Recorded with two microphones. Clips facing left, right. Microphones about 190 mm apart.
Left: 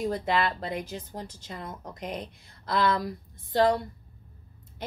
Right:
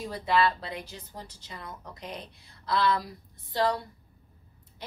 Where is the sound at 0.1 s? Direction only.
50° left (ahead or behind).